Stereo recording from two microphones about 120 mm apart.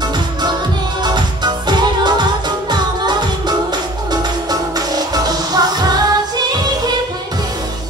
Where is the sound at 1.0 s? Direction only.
40° right (ahead or behind).